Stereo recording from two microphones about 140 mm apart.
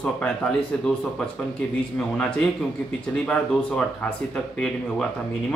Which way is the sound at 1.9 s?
5° left (ahead or behind).